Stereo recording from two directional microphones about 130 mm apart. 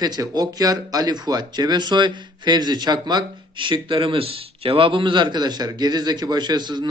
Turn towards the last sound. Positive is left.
turn(degrees=-35)  # may be behind; listen again after turning